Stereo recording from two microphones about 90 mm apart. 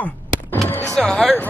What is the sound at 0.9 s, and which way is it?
Speech, 5° left (ahead or behind).